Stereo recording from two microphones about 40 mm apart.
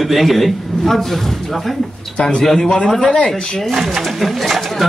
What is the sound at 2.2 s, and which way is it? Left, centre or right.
A man's voice, left.